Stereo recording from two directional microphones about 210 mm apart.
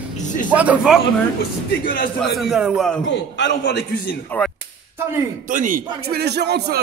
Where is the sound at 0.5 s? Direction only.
5° right (ahead or behind).